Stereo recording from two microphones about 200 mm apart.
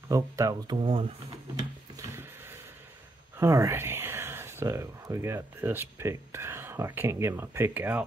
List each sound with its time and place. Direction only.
0.1 s speech: 15° right (ahead or behind)
1.6 s a sound: 15° right (ahead or behind)
3.3 s speech: 15° right (ahead or behind)